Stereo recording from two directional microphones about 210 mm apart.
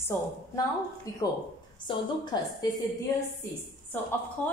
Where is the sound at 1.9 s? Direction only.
25° left (ahead or behind).